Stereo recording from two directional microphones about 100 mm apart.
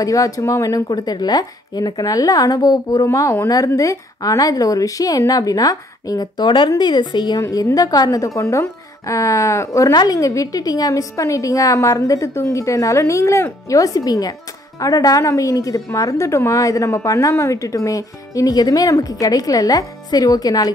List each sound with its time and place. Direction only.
0.0 s a woman's voice: 35° left (ahead or behind)
7.4 s speech: 35° left (ahead or behind)